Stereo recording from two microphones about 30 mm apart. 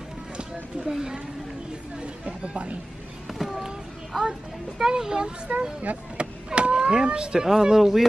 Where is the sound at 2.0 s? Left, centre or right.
Right.